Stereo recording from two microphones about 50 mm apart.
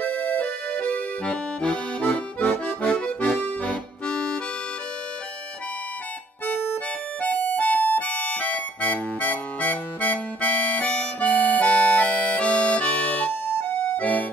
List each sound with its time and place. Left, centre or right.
0.0 s music: left
0.7 s accordion: left
4.1 s music: centre
7.2 s music: left